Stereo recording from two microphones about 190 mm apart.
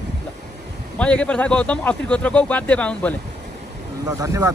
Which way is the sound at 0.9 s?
5° left (ahead or behind).